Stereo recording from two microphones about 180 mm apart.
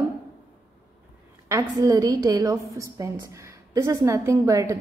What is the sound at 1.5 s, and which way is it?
A woman's voice, 20° right (ahead or behind).